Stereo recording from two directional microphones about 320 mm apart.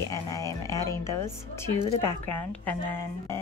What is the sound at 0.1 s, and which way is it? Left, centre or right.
Speech, centre.